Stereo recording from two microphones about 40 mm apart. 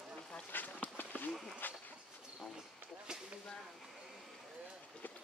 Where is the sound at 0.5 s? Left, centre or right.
Left.